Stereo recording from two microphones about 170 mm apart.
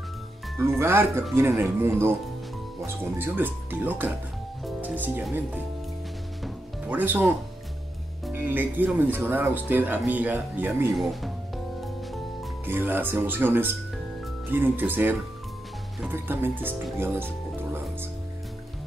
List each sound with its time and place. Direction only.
0.6 s speech: 15° right (ahead or behind)
6.4 s music: 10° right (ahead or behind)
8.3 s speech: 10° right (ahead or behind)
10.9 s speech: centre (ahead or behind)
12.6 s speech: 10° right (ahead or behind)